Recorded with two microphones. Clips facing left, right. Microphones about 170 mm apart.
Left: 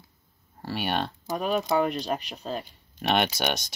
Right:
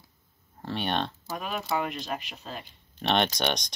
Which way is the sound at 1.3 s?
35° left (ahead or behind).